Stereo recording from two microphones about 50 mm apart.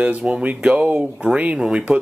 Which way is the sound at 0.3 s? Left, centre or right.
Right.